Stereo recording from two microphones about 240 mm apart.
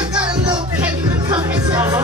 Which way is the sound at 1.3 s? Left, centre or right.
Centre.